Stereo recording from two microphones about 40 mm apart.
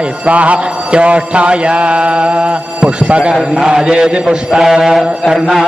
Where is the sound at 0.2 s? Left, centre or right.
Right; by 4.6 s centre.